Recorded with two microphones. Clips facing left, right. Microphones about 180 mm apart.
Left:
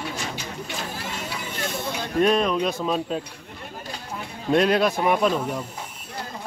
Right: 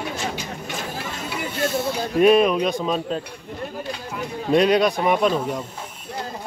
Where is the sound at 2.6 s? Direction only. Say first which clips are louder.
Right 2 dB; 5° left (ahead or behind).